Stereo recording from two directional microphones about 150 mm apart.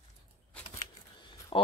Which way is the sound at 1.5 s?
40° left (ahead or behind).